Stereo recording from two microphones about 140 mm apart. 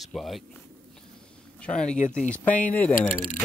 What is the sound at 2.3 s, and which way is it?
Speech, 10° left (ahead or behind).